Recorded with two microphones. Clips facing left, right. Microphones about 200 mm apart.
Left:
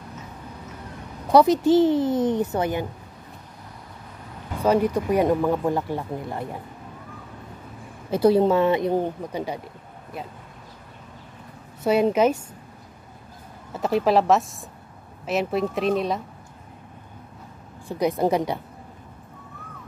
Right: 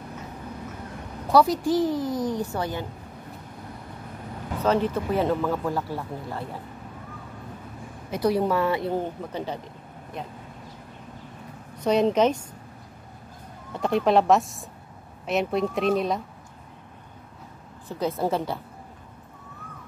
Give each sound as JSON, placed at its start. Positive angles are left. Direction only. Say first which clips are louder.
{"t": 1.3, "sound": "a woman's voice", "louder": "left 4 dB", "side_deg": 20}
{"t": 4.6, "sound": "speech", "louder": "left 3 dB", "side_deg": 10}
{"t": 8.1, "sound": "a woman's voice", "louder": "left 5 dB", "side_deg": 25}
{"t": 11.8, "sound": "speech", "louder": "left 1 dB", "side_deg": 5}
{"t": 13.7, "sound": "speech", "louder": "left 1 dB", "side_deg": 5}
{"t": 17.8, "sound": "speech", "louder": "left 4 dB", "side_deg": 15}